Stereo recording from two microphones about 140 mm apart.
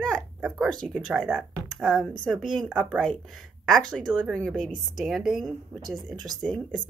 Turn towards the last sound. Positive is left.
turn(degrees=10)  # may be behind; listen again after turning